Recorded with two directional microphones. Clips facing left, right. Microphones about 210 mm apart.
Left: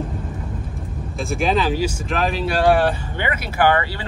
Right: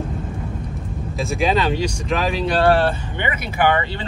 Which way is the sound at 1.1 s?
Centre (ahead or behind).